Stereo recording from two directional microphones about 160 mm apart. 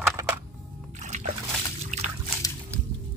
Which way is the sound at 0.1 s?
20° right (ahead or behind).